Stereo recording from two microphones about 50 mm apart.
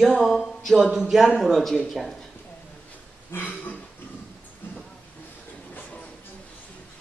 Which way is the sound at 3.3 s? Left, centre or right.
Left.